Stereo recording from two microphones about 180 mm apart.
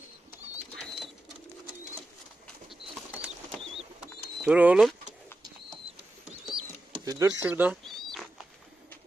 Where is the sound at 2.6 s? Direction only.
5° right (ahead or behind).